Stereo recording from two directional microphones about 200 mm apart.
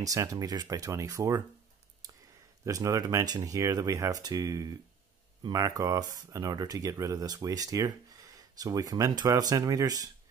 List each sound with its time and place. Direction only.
0.0 s speech: 15° right (ahead or behind)
2.6 s speech: 15° right (ahead or behind)